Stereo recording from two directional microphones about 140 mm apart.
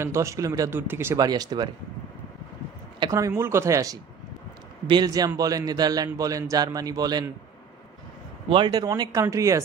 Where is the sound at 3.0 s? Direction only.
25° right (ahead or behind).